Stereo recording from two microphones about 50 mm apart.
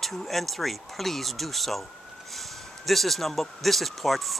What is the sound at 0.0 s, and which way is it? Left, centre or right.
Speech, centre.